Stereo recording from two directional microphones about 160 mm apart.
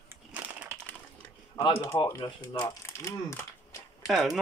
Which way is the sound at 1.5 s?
35° left (ahead or behind).